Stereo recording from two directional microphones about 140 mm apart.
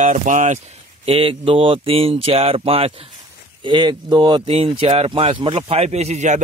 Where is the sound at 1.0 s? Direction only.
40° right (ahead or behind).